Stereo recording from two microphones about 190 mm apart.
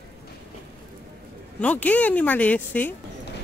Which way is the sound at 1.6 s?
10° left (ahead or behind).